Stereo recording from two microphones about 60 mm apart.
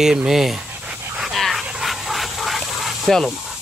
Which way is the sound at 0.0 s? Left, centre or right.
Centre.